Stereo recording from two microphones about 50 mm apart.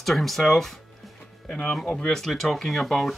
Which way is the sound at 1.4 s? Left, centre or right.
Centre.